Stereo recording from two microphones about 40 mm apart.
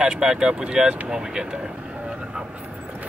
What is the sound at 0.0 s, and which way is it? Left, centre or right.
Speech, centre.